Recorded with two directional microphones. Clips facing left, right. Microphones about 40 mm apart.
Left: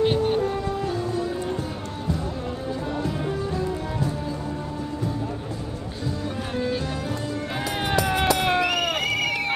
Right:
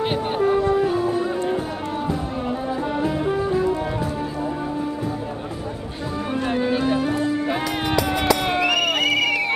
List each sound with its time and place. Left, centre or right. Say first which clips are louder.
3.0 s music: right 5 dB; right
6.5 s music: right 7 dB; right
8.5 s a sound: right 3 dB; right